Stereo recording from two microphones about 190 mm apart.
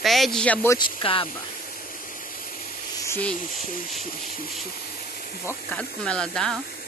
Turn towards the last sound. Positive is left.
turn(degrees=5)  # may be behind; listen again after turning